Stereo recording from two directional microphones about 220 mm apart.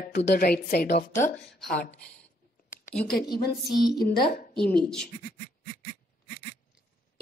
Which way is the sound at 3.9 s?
45° left (ahead or behind).